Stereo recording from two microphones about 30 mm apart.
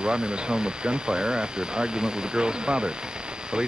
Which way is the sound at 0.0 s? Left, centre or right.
Right.